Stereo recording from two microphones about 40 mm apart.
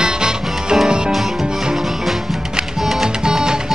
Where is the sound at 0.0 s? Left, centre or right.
Centre.